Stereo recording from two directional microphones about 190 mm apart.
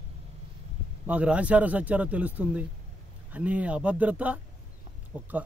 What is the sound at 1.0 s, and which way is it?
Speech, 5° right (ahead or behind).